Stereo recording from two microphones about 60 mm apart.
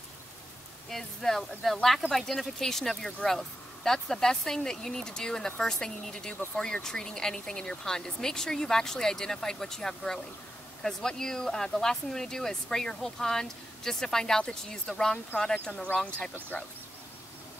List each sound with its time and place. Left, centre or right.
0.8 s speech: centre
16.5 s speech: left